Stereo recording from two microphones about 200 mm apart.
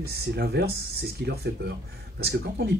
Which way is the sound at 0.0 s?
55° right (ahead or behind).